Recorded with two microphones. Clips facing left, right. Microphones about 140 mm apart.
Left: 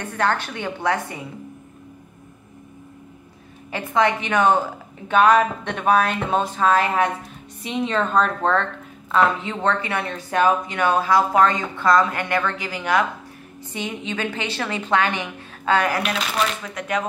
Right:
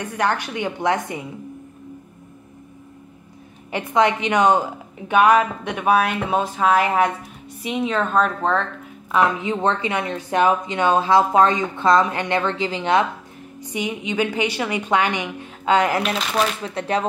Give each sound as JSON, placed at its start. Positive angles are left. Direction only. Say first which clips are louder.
{"t": 0.0, "sound": "a woman's voice", "louder": "even", "side_deg": -15}
{"t": 3.7, "sound": "a woman's voice", "louder": "right 2 dB", "side_deg": -20}
{"t": 9.1, "sound": "a woman's voice", "louder": "right 1 dB", "side_deg": -15}
{"t": 16.6, "sound": "speech", "louder": "right 3 dB", "side_deg": -30}